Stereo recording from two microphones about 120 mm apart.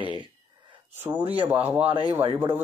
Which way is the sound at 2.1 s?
50° right (ahead or behind).